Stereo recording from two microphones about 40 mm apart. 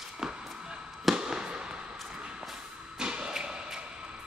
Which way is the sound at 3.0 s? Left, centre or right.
Right.